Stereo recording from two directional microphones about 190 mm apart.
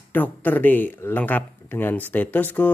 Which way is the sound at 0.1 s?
10° left (ahead or behind).